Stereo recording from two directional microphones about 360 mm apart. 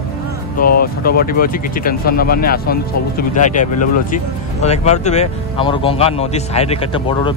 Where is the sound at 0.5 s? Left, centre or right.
Left.